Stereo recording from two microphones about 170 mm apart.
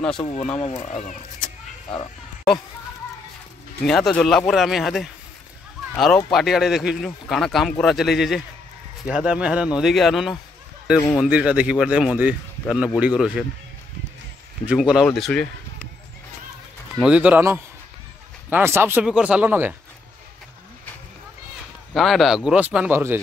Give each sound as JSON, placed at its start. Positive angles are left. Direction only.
{"t": 0.2, "sound": "speech", "side_deg": 35}
{"t": 3.8, "sound": "speech", "side_deg": 5}
{"t": 14.7, "sound": "speech", "side_deg": -5}
{"t": 17.0, "sound": "speech", "side_deg": -5}
{"t": 21.9, "sound": "speech", "side_deg": 0}